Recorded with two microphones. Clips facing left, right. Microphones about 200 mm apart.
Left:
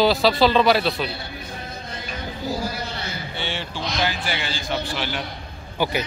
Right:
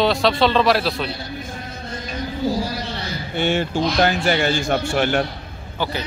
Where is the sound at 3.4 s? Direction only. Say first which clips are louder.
Right 12 dB; 50° right (ahead or behind).